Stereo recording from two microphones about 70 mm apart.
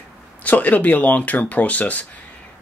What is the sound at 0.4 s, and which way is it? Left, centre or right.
Speech, left.